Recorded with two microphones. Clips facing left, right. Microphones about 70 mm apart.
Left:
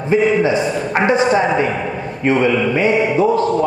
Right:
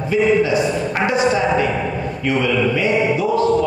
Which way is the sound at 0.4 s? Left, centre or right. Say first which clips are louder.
Left 1 dB; left.